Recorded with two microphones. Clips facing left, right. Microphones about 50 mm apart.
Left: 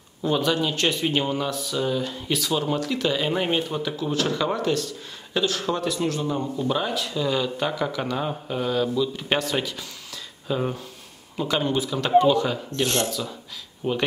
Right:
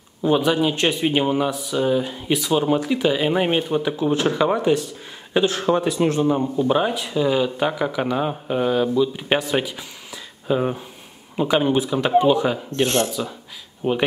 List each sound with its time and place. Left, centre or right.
0.2 s speech: centre
13.8 s speech: centre